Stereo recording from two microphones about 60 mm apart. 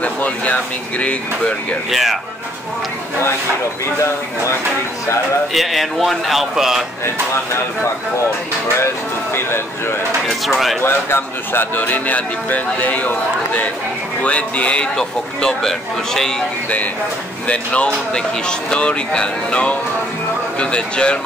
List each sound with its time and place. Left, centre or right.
0.0 s speech: left
1.9 s a man's voice: centre
5.5 s a man's voice: centre
8.7 s speech: left
10.2 s a man's voice: centre
10.8 s speech: left
15.0 s speech: centre
17.5 s speech: centre